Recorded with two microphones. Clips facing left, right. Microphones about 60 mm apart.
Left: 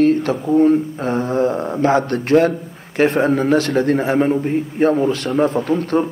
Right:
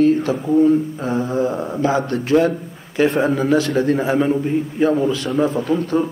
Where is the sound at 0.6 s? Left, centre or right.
Left.